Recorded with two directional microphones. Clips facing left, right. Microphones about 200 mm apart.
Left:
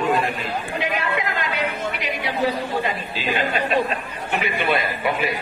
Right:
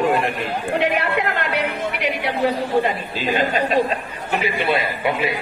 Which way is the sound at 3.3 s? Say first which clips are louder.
Right 2 dB; 40° right (ahead or behind).